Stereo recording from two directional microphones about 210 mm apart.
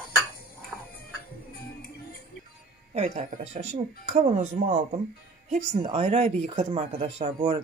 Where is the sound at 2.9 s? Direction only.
35° right (ahead or behind).